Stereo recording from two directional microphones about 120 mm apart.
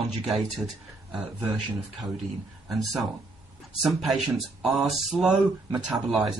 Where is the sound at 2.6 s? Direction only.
Centre (ahead or behind).